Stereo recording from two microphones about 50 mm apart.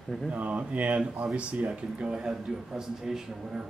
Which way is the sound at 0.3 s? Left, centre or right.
Right.